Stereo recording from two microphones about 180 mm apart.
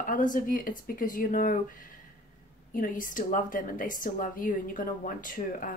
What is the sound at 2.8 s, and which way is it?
A woman's voice, 50° left (ahead or behind).